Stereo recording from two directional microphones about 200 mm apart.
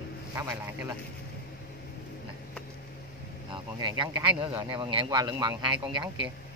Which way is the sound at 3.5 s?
25° right (ahead or behind).